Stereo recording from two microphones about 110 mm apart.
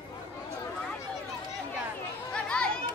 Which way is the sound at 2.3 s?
10° left (ahead or behind).